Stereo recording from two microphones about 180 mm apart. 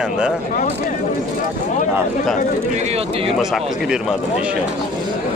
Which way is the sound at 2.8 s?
35° right (ahead or behind).